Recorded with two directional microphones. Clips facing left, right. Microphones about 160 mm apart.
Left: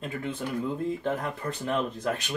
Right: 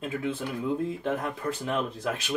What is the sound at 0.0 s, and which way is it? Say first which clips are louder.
Speech: right 2 dB; 5° right (ahead or behind).